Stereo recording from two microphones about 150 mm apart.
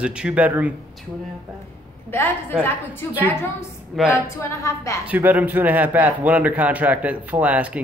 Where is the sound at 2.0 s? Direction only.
15° left (ahead or behind).